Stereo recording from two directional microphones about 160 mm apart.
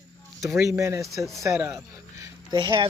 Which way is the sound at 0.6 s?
15° right (ahead or behind).